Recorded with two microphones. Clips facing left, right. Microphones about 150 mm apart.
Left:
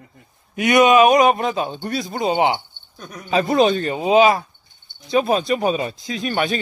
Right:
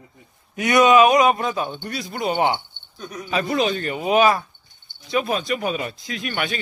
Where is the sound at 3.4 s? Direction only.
40° left (ahead or behind).